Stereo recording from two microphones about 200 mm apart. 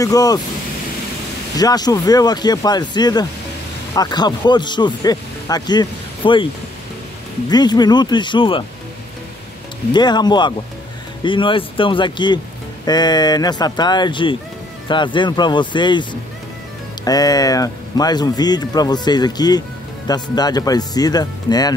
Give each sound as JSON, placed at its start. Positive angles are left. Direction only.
{"t": 0.0, "sound": "speech", "side_deg": 20}
{"t": 1.6, "sound": "speech", "side_deg": 20}
{"t": 7.4, "sound": "speech", "side_deg": 20}
{"t": 9.9, "sound": "speech", "side_deg": 20}